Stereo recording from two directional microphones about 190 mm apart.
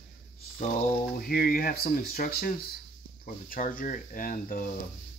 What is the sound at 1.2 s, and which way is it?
Speech, 50° left (ahead or behind).